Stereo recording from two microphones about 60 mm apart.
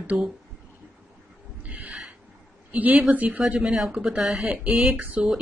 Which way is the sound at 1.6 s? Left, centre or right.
Right.